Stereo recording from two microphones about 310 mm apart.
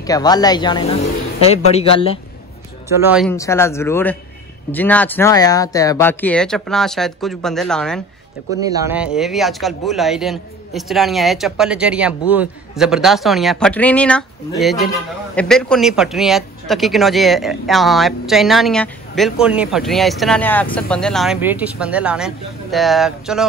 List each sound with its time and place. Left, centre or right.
0.0 s a man's voice: centre
2.9 s speech: centre
3.3 s speech: centre
8.5 s speech: centre